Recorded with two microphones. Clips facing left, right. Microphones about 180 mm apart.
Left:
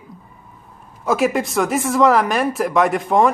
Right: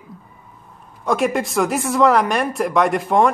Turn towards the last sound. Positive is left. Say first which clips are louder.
# even
turn(degrees=0)  # may be behind; listen again after turning